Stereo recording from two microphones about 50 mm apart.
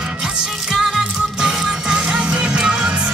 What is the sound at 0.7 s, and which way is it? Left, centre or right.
Music, centre.